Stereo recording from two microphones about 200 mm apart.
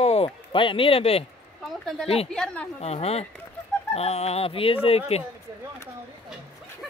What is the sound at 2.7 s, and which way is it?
Speech, 30° left (ahead or behind).